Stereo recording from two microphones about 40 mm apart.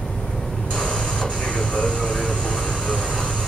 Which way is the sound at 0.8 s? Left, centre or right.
Centre.